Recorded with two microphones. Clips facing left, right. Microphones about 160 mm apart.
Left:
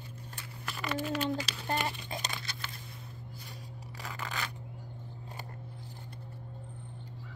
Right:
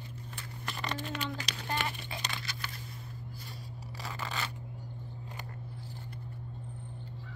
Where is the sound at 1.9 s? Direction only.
45° left (ahead or behind).